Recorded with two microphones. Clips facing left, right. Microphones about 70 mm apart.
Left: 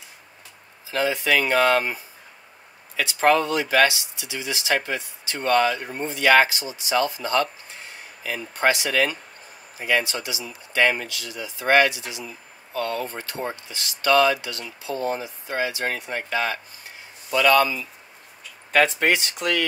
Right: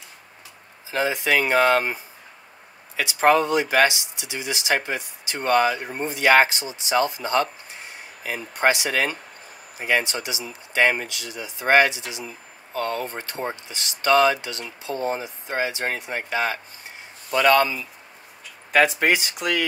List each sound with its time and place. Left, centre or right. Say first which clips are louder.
0.9 s speech: even; centre
3.0 s speech: right 1 dB; centre
17.3 s speech: even; right
18.7 s speech: right 1 dB; centre